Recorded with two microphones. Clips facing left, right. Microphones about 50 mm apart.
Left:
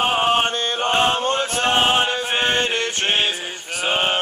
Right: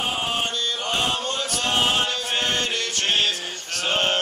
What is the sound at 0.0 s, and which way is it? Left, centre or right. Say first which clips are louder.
Chant: left 8 dB; left.